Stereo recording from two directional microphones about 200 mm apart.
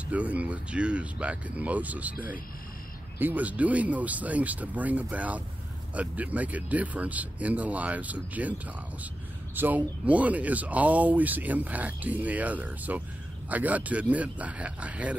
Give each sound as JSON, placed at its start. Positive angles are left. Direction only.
{"t": 0.0, "sound": "speech", "side_deg": -5}
{"t": 3.2, "sound": "speech", "side_deg": -10}
{"t": 9.6, "sound": "speech", "side_deg": -10}